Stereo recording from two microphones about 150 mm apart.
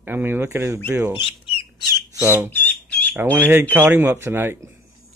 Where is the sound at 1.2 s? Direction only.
35° left (ahead or behind).